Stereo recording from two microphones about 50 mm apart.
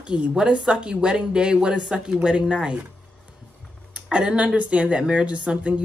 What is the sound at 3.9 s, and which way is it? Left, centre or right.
A woman's voice, right.